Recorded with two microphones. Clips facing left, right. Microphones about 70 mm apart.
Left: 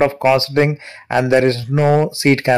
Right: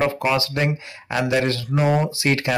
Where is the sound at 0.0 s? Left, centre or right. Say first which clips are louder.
Left 7 dB; left.